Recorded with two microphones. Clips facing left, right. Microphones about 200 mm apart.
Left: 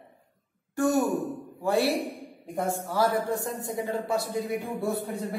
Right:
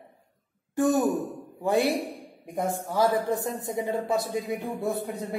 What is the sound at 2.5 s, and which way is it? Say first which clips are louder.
Speech: right 1 dB; 20° right (ahead or behind).